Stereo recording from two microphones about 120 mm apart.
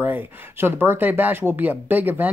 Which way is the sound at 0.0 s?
15° right (ahead or behind).